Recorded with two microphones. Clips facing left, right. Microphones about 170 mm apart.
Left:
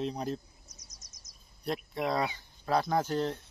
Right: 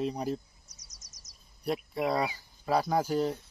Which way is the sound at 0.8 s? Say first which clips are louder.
Left 1 dB; 80° right.